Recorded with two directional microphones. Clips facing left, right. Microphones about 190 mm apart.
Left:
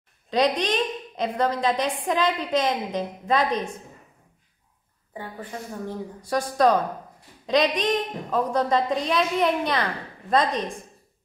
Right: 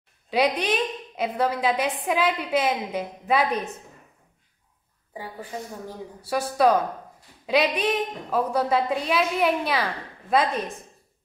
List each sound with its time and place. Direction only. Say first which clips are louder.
0.3 s a woman's voice: left 1 dB; 10° right (ahead or behind)
5.1 s a woman's voice: even; 10° right (ahead or behind)